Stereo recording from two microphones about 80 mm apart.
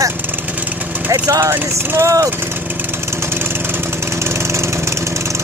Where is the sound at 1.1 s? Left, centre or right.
Right.